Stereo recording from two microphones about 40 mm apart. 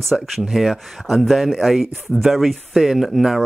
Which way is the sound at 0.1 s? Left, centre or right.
Centre.